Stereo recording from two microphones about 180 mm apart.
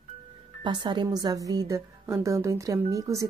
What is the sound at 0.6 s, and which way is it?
A woman's voice, 25° right (ahead or behind).